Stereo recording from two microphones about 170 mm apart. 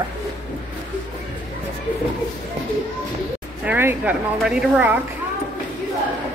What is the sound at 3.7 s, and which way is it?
A woman's voice, 10° right (ahead or behind).